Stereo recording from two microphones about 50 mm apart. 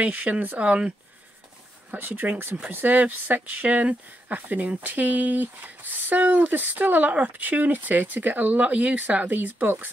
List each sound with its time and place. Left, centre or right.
0.0 s speech: right
1.9 s speech: right